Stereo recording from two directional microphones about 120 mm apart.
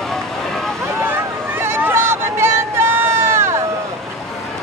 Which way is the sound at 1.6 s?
20° right (ahead or behind).